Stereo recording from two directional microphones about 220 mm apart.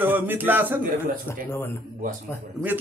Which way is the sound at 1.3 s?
10° left (ahead or behind).